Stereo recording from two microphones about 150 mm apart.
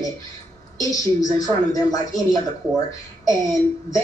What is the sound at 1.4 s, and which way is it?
A woman's voice, 25° left (ahead or behind).